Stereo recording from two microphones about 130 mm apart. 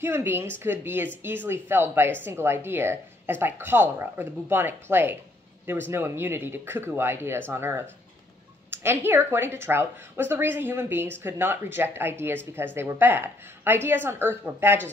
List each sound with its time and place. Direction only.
0.0 s speech: 15° right (ahead or behind)